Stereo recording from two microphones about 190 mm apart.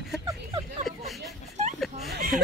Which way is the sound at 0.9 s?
Centre (ahead or behind).